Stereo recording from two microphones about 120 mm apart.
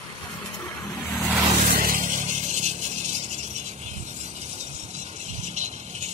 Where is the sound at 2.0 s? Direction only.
85° right.